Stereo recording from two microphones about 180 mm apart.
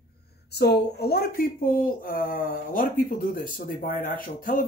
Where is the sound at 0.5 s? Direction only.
65° left (ahead or behind).